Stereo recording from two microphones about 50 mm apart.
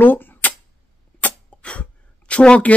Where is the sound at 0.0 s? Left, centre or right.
Left.